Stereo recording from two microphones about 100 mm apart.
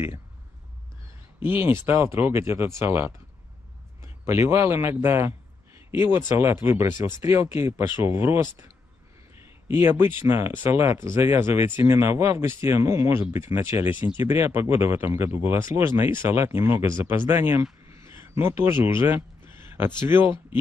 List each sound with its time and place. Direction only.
1.4 s speech: 20° right (ahead or behind)
4.3 s speech: 25° right (ahead or behind)
9.7 s speech: 20° right (ahead or behind)
17.9 s a sound: 25° right (ahead or behind)
20.0 s speech: 20° right (ahead or behind)